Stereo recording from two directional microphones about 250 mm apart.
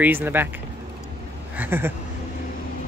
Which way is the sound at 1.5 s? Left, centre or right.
Centre.